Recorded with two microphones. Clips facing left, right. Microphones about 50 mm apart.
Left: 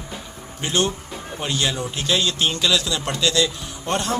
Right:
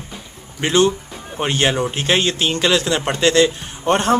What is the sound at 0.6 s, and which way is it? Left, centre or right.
Speech, right.